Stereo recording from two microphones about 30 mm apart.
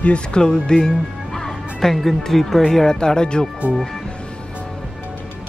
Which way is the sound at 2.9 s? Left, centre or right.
Left.